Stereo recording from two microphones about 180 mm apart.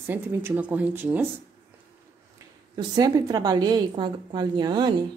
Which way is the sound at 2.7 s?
20° right (ahead or behind).